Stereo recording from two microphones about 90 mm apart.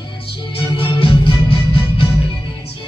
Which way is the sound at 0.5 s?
70° left (ahead or behind).